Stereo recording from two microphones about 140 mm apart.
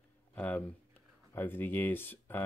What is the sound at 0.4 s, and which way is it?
Speech, 10° left (ahead or behind).